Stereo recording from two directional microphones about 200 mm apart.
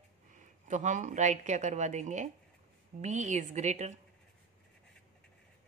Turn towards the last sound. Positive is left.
turn(degrees=-35)  # may be behind; listen again after turning